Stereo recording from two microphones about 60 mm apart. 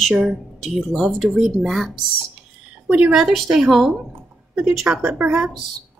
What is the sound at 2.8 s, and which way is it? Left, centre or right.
Speech, right.